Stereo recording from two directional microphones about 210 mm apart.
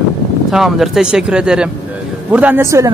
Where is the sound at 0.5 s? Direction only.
Centre (ahead or behind).